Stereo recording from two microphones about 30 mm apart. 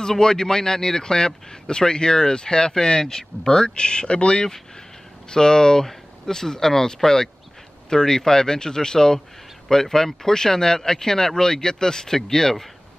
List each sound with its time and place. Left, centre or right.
0.0 s speech: left
5.3 s speech: left